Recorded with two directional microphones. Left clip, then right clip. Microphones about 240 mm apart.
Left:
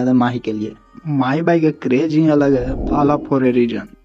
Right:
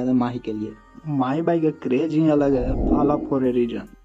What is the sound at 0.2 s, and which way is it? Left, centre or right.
Speech, centre.